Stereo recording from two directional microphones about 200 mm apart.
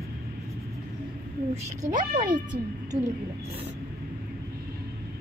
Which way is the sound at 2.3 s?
20° right (ahead or behind).